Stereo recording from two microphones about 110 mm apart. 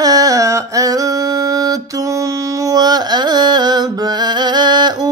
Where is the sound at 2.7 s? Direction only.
40° right (ahead or behind).